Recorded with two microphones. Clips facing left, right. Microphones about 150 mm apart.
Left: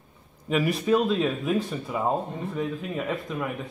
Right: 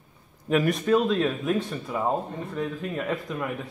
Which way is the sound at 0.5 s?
Centre (ahead or behind).